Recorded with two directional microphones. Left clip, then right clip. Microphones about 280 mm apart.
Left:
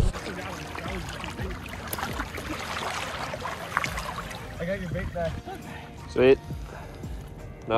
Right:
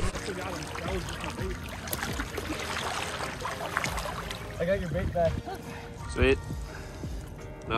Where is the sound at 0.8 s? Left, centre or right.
Centre.